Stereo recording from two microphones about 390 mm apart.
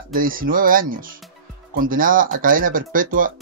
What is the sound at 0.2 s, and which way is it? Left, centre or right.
Speech, right.